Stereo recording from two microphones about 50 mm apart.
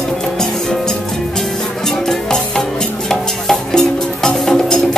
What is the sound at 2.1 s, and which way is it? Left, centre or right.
Music, centre.